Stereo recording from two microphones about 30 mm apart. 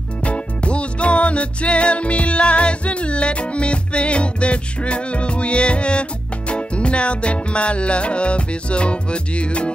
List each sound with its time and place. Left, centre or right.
0.2 s music: left